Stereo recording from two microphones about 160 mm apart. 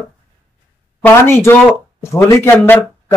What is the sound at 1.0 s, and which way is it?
A man's voice, 15° left (ahead or behind).